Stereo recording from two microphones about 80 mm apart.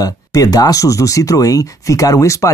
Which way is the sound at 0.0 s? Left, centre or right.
Left.